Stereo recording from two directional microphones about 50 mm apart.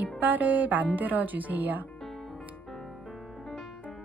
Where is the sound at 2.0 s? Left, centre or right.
Centre.